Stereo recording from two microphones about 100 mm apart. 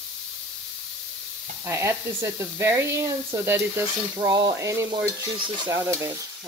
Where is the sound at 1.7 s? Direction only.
25° right (ahead or behind).